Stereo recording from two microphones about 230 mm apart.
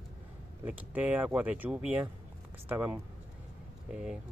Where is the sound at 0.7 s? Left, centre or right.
Centre.